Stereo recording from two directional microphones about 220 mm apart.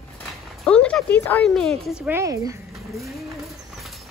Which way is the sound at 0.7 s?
5° left (ahead or behind).